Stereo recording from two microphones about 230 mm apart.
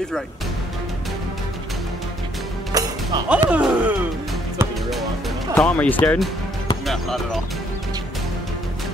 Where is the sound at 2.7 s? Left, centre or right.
Centre.